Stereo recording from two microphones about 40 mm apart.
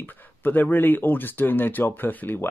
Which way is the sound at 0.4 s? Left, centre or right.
Left.